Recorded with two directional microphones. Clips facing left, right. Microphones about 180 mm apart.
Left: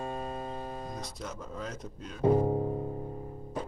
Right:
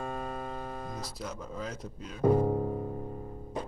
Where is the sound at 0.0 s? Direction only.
25° left (ahead or behind).